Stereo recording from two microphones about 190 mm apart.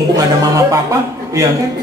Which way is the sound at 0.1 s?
20° right (ahead or behind).